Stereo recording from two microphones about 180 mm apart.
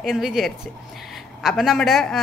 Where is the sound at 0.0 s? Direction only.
Centre (ahead or behind).